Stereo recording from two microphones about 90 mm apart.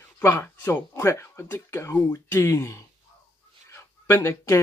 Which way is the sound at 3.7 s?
30° left (ahead or behind).